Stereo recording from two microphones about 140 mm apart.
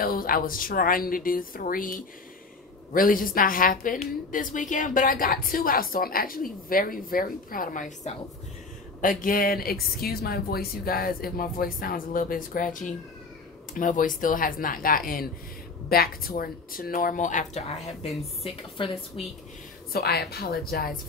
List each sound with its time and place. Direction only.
0.0 s a woman's voice: 90° left
2.9 s a woman's voice: 90° left; by 8.1 s 70° left (ahead or behind)
9.2 s a woman's voice: 90° left; by 18.1 s 60° left (ahead or behind)
18.4 s a woman's voice: 45° left (ahead or behind)
19.9 s a woman's voice: 90° left